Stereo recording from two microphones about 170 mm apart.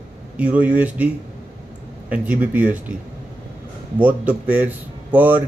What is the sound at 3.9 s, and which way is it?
A man's voice, 10° right (ahead or behind).